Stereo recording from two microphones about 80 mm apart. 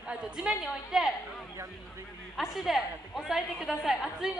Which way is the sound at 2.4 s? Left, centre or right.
Centre.